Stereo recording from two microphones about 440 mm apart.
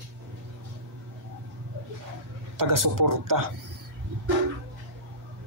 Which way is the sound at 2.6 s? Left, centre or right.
Right.